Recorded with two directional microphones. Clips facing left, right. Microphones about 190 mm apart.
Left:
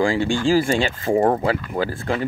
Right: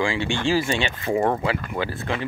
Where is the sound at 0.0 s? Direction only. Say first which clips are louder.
Left 4 dB; 40° left (ahead or behind).